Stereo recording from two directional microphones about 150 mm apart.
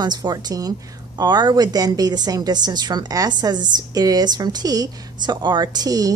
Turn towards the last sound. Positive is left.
turn(degrees=-25)  # may be behind; listen again after turning